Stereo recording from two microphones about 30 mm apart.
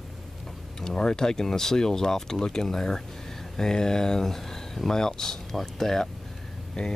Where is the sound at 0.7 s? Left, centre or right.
Left.